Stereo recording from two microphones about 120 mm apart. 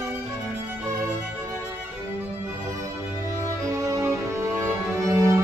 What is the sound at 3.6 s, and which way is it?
Music, 30° right (ahead or behind).